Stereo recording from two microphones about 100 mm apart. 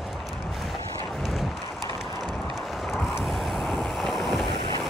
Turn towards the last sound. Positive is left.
turn(degrees=0)  # may be behind; listen again after turning